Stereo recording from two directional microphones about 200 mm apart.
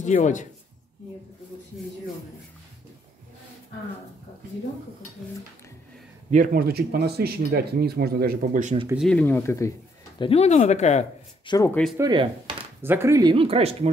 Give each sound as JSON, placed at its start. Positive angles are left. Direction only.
{"t": 0.0, "sound": "speech", "side_deg": 40}
{"t": 6.3, "sound": "speech", "side_deg": -45}
{"t": 8.9, "sound": "speech", "side_deg": 5}
{"t": 10.1, "sound": "speech", "side_deg": 25}
{"t": 11.4, "sound": "speech", "side_deg": 20}
{"t": 12.0, "sound": "speech", "side_deg": -25}
{"t": 12.8, "sound": "speech", "side_deg": -10}